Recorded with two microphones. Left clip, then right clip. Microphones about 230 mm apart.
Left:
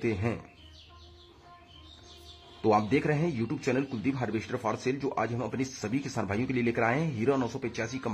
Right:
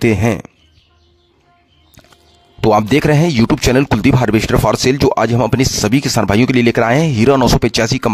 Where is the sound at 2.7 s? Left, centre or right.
Right.